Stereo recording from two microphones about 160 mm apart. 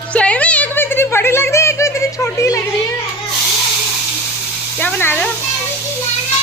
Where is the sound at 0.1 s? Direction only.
10° left (ahead or behind).